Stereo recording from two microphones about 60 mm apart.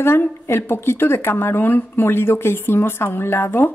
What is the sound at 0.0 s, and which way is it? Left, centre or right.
A woman's voice, left.